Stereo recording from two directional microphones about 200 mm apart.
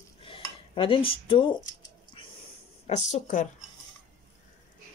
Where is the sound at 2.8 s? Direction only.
35° left (ahead or behind).